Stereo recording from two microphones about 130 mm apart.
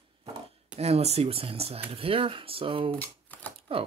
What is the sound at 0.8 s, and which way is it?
Speech, 55° right (ahead or behind).